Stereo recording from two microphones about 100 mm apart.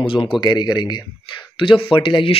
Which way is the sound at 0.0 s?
65° left (ahead or behind).